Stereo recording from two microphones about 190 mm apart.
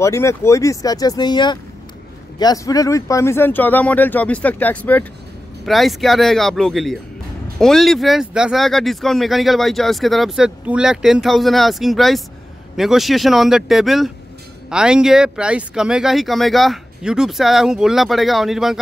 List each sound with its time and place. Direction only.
0.0 s speech: 15° left (ahead or behind); by 18.8 s centre (ahead or behind)